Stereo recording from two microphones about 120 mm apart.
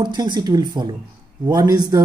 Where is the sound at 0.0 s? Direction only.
40° right (ahead or behind).